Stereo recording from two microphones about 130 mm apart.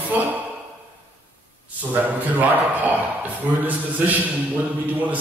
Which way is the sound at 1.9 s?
15° right (ahead or behind).